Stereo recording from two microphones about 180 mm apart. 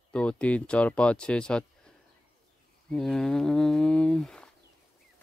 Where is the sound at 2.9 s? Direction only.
5° left (ahead or behind).